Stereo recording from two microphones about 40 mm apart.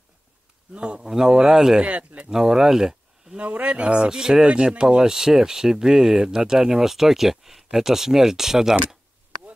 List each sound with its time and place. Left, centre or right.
0.7 s speech: right
1.8 s speech: right
2.2 s speech: centre
3.6 s speech: right; by 8.7 s centre